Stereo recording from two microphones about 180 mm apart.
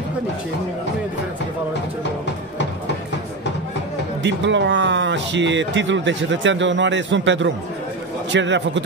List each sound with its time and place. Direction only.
4.2 s a man's voice: 80° right